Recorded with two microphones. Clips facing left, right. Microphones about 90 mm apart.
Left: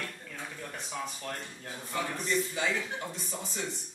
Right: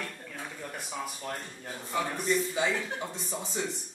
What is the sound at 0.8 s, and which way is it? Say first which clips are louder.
A man's voice: even; 5° right (ahead or behind).